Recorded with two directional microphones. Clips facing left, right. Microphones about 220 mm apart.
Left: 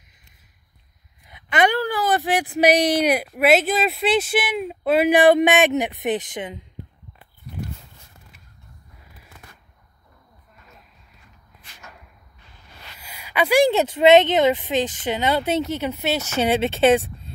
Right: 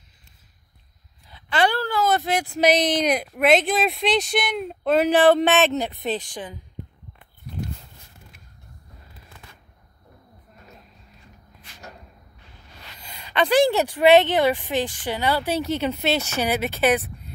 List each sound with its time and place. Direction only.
1.2 s speech: 20° left (ahead or behind)
13.0 s speech: 10° left (ahead or behind); by 17.3 s 25° left (ahead or behind)